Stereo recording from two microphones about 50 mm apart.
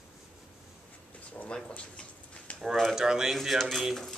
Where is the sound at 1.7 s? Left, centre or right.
Left.